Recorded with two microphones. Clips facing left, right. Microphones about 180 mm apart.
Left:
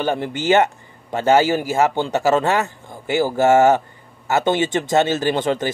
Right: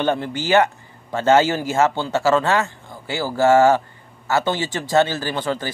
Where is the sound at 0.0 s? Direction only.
15° left (ahead or behind).